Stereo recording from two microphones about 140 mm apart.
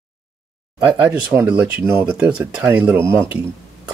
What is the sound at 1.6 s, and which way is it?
Speech, 15° right (ahead or behind).